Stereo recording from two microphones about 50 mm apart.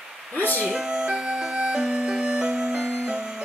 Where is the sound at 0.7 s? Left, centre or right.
Centre.